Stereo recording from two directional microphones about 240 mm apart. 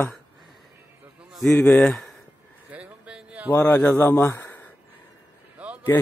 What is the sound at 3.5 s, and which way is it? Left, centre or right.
Speech, centre.